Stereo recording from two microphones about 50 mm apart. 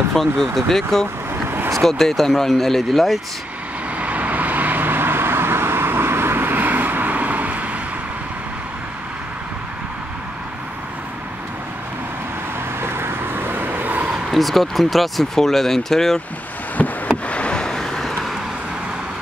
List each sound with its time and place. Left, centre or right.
0.1 s speech: centre
4.0 s vehicle: right
12.8 s vehicle: right
14.3 s speech: centre
16.8 s a sound: left
17.3 s vehicle: left; by 18.3 s centre